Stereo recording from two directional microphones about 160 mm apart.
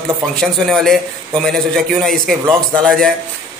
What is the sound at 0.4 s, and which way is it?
A man's voice, centre (ahead or behind).